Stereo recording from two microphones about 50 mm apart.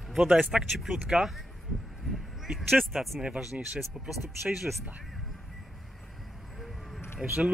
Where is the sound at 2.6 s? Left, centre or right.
Centre.